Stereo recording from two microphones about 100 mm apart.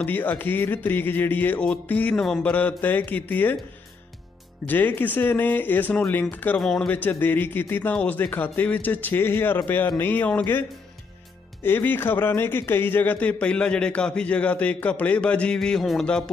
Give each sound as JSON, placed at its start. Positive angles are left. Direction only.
{"t": 0.0, "sound": "music", "side_deg": 15}
{"t": 1.9, "sound": "a man's voice", "side_deg": 15}
{"t": 2.1, "sound": "a man's voice", "side_deg": 5}
{"t": 4.6, "sound": "music", "side_deg": 20}
{"t": 6.6, "sound": "speech", "side_deg": 0}
{"t": 6.9, "sound": "music", "side_deg": 15}
{"t": 7.9, "sound": "a man's voice", "side_deg": 15}
{"t": 9.9, "sound": "music", "side_deg": 20}
{"t": 11.6, "sound": "a man's voice", "side_deg": 20}